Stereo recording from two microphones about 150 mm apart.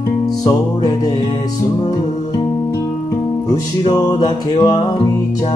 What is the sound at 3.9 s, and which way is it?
Music, 25° left (ahead or behind).